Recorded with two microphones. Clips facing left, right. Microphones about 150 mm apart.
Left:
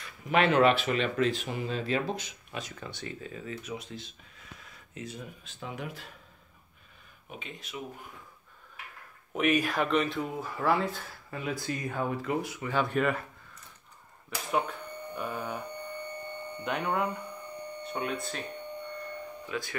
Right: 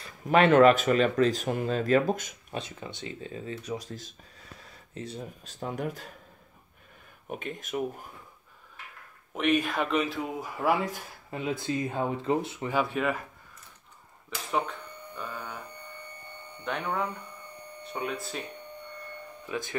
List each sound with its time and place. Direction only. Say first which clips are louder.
0.0 s speech: right 4 dB; 40° right (ahead or behind)
2.5 s speech: right 3 dB; 25° right (ahead or behind); by 6.1 s 45° right (ahead or behind)
7.2 s speech: right 8 dB; 50° right (ahead or behind)
9.3 s speech: right 1 dB; centre (ahead or behind); by 12.7 s 25° right (ahead or behind)
12.7 s speech: even; centre (ahead or behind)
14.5 s a sound: even; 5° left (ahead or behind)
15.2 s speech: left 4 dB; 15° left (ahead or behind)
16.6 s speech: left 1 dB; 10° left (ahead or behind)
17.8 s speech: even; centre (ahead or behind)